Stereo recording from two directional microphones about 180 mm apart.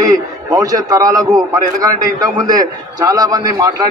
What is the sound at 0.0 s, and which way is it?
A man's voice, 20° right (ahead or behind).